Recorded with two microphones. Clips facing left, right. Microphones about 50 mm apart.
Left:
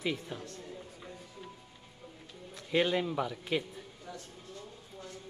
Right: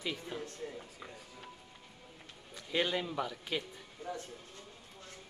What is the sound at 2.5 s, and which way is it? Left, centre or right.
Speech, centre.